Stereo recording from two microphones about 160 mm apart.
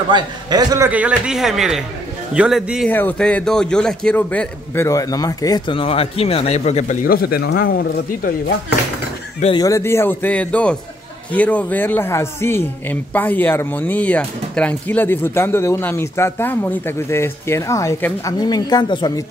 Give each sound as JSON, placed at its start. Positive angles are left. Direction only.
{"t": 0.1, "sound": "a man's voice", "side_deg": -25}
{"t": 0.8, "sound": "speech", "side_deg": -10}
{"t": 2.9, "sound": "a man's voice", "side_deg": 10}
{"t": 7.1, "sound": "speech", "side_deg": 70}
{"t": 9.6, "sound": "a man's voice", "side_deg": 20}